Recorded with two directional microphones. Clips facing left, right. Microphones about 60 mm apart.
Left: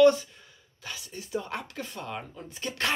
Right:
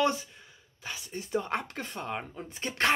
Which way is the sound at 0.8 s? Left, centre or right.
Right.